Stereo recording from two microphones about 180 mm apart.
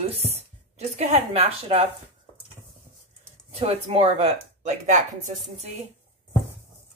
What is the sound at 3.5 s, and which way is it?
Speech, 35° right (ahead or behind).